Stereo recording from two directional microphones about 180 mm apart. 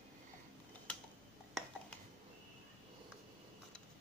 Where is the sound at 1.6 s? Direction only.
Centre (ahead or behind).